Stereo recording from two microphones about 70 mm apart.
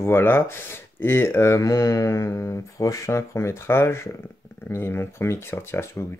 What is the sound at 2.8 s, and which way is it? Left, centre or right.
Speech, left.